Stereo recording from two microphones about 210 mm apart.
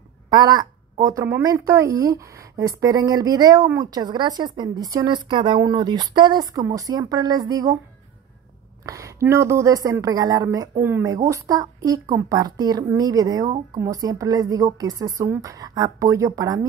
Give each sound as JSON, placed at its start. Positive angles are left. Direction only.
{"t": 0.3, "sound": "a woman's voice", "side_deg": -20}
{"t": 8.8, "sound": "a woman's voice", "side_deg": -15}